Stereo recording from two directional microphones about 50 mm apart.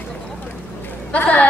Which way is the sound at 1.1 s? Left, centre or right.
Left.